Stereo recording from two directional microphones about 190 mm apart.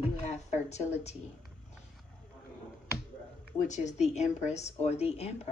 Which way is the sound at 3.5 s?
40° left (ahead or behind).